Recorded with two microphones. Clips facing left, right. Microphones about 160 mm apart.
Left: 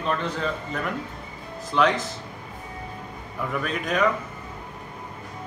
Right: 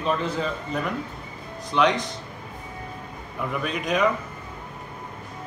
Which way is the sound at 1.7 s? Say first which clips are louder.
Even; centre (ahead or behind).